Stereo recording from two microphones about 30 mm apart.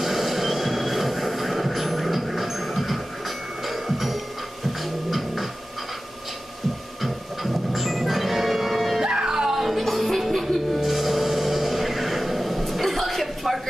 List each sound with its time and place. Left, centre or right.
0.0 s train: centre
5.1 s printer: centre
7.7 s music: centre
9.0 s music: right
9.7 s music: centre